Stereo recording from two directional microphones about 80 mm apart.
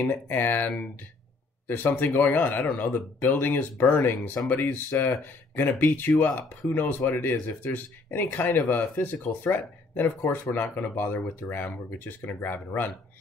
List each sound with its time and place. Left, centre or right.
0.0 s speech: left